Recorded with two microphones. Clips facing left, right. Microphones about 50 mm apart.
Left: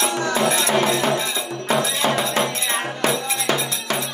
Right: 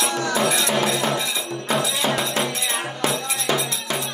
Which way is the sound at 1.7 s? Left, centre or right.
Left.